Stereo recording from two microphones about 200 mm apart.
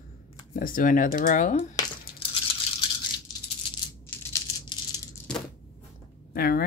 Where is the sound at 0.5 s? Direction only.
45° left (ahead or behind).